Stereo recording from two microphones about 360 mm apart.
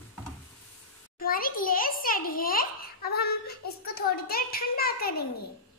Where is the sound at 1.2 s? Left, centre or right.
Left.